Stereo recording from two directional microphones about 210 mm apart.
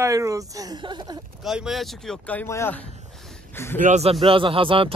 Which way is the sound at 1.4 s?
Centre (ahead or behind).